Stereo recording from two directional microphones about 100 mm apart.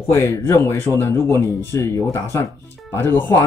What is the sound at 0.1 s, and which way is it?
Speech, 30° left (ahead or behind).